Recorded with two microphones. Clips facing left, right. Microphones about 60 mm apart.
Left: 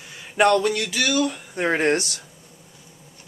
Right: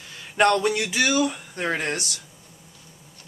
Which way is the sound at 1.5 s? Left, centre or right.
Centre.